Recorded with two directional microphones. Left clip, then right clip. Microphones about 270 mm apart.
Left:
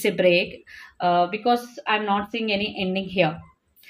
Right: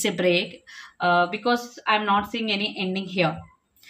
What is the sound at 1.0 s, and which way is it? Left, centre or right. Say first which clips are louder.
A woman's voice: left 1 dB; centre.